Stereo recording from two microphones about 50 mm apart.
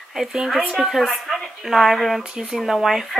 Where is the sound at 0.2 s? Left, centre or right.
Centre.